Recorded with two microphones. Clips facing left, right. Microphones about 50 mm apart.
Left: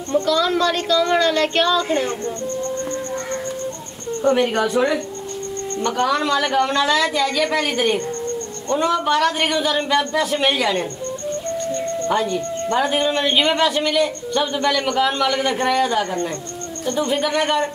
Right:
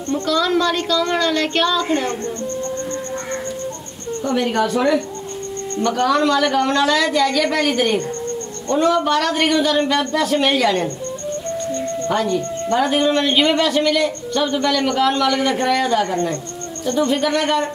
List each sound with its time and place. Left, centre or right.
0.3 s speech: centre
4.2 s speech: left; by 5.0 s centre
6.0 s speech: centre
12.3 s speech: centre
12.7 s speech: centre